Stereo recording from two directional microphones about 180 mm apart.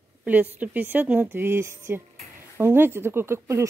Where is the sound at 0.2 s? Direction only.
10° right (ahead or behind).